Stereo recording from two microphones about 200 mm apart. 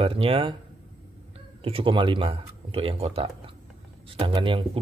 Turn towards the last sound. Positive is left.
turn(degrees=-25)  # may be behind; listen again after turning